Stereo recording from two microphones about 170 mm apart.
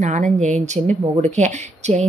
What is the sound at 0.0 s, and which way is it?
Speech, 45° right (ahead or behind).